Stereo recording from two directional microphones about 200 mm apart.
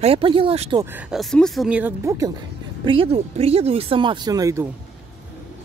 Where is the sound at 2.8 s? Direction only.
25° right (ahead or behind).